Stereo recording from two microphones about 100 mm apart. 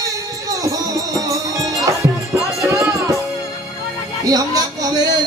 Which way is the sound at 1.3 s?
30° right (ahead or behind).